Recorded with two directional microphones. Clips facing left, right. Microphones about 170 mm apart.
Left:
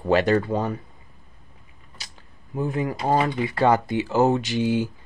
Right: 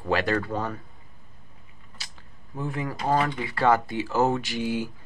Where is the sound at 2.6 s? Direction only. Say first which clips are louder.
Left 5 dB; 20° left (ahead or behind).